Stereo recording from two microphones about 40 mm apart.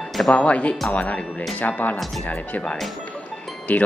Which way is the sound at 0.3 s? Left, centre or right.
Left.